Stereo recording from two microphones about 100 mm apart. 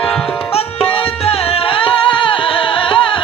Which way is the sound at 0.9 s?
80° left.